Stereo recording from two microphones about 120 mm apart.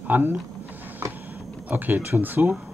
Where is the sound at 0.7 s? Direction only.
15° right (ahead or behind).